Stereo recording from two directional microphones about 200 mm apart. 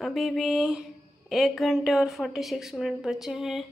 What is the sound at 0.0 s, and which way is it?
A woman's voice, centre (ahead or behind).